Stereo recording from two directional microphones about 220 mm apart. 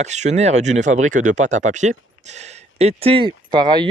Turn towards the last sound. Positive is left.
turn(degrees=-20)  # may be behind; listen again after turning